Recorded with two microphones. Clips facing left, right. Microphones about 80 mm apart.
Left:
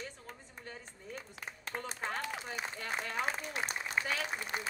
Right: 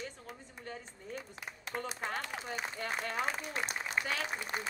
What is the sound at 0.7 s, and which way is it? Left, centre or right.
A woman's voice, centre.